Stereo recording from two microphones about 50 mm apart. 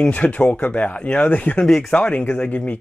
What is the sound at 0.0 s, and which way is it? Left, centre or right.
Speech, left.